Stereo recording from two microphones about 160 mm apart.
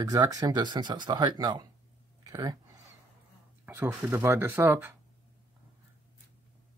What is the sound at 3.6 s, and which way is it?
Speech, 10° right (ahead or behind).